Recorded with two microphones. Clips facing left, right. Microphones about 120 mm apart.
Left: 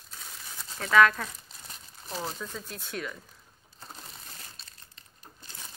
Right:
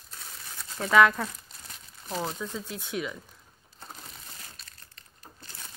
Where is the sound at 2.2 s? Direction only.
10° right (ahead or behind).